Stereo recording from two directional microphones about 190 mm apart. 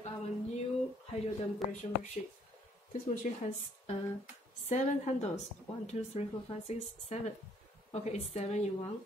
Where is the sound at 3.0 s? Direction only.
40° left (ahead or behind).